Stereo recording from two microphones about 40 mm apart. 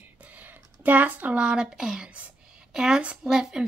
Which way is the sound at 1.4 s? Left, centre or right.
Right.